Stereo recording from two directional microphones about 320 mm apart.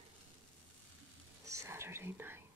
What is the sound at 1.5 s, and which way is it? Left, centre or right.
Whispering, centre.